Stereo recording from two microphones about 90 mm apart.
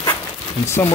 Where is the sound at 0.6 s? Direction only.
30° left (ahead or behind).